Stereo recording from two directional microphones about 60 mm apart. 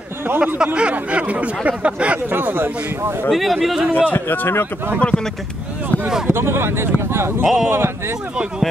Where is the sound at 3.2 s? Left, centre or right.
Centre.